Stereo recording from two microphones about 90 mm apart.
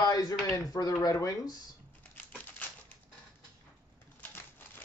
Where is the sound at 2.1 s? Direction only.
15° left (ahead or behind).